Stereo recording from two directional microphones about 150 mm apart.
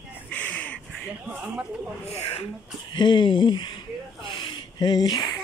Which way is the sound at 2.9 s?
30° left (ahead or behind).